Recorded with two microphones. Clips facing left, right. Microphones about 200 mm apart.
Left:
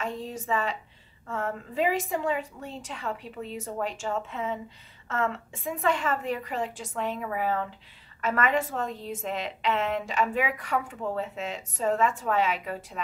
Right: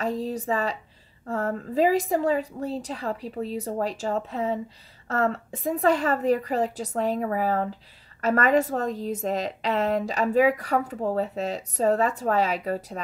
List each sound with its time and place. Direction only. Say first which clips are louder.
0.0 s a woman's voice: right 6 dB; 35° right (ahead or behind)